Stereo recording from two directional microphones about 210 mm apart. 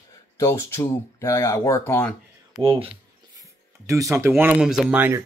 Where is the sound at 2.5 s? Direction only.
25° right (ahead or behind).